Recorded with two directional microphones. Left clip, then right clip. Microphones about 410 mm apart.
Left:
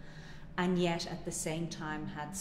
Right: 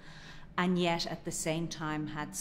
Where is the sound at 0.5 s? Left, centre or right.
Right.